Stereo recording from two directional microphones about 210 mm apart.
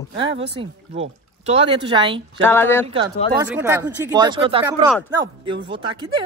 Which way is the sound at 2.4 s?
10° left (ahead or behind).